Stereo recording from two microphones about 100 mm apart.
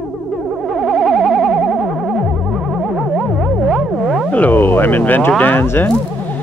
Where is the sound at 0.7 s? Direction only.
Centre (ahead or behind).